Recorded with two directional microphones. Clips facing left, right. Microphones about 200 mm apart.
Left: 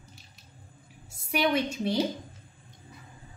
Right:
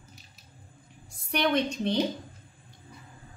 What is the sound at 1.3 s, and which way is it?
Speech, 5° left (ahead or behind).